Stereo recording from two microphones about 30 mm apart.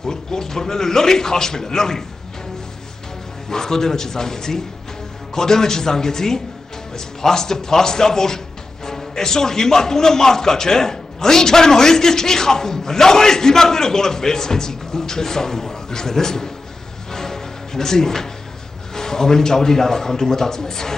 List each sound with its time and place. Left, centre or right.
0.0 s a man's voice: centre
3.4 s a man's voice: centre
17.1 s music: centre
18.9 s a man's voice: centre